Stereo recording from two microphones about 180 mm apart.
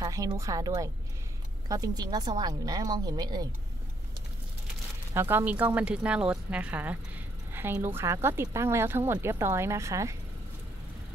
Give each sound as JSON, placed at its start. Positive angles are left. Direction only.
{"t": 0.0, "sound": "a woman's voice", "side_deg": -20}
{"t": 5.1, "sound": "speech", "side_deg": -10}